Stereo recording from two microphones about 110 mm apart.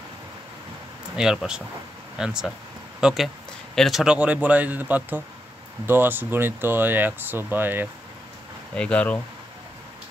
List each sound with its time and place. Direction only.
1.1 s speech: 5° right (ahead or behind)
8.7 s speech: 10° left (ahead or behind)